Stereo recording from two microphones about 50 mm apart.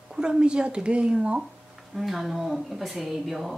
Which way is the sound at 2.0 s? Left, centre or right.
Centre.